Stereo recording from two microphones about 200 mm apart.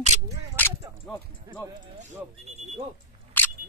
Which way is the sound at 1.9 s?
35° right (ahead or behind).